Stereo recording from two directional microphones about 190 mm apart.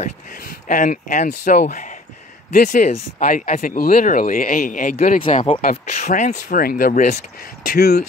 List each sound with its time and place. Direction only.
0.0 s speech: 45° left (ahead or behind)
7.6 s speech: 55° left (ahead or behind)